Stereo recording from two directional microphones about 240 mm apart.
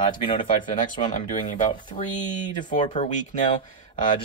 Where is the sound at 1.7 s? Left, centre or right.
Centre.